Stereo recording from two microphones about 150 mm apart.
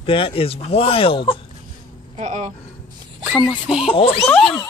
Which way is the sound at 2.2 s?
50° right (ahead or behind).